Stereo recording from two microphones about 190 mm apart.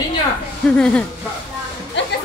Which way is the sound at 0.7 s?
5° left (ahead or behind).